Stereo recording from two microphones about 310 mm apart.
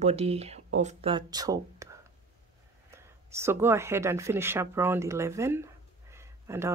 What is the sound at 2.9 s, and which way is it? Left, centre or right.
Speech, centre.